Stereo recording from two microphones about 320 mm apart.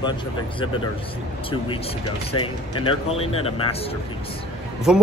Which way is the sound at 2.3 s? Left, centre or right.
Centre.